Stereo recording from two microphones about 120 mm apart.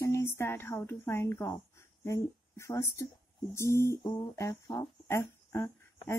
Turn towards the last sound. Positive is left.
turn(degrees=20)  # may be behind; listen again after turning